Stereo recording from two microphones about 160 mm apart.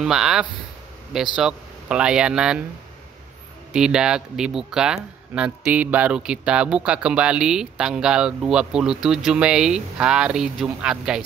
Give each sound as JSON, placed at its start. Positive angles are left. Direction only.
{"t": 0.0, "sound": "speech", "side_deg": -5}
{"t": 3.7, "sound": "speech", "side_deg": -5}